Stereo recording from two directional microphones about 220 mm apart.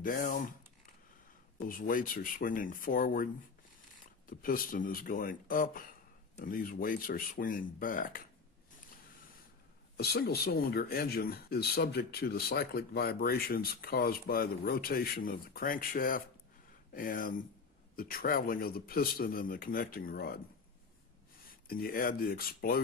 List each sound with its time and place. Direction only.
0.0 s speech: 40° left (ahead or behind)
1.7 s speech: 40° left (ahead or behind)
4.3 s speech: 40° left (ahead or behind)
9.9 s speech: 45° left (ahead or behind)
21.5 s speech: 40° left (ahead or behind)